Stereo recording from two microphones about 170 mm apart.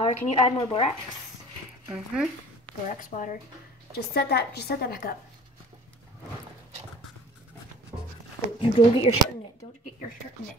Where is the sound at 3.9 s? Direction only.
70° left (ahead or behind).